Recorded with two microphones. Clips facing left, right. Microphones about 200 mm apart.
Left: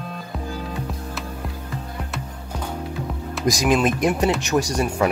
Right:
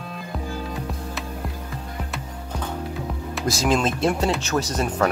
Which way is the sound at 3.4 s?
15° left (ahead or behind).